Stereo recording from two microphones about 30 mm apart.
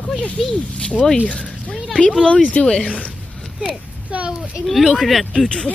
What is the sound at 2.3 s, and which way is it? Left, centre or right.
Speech, left.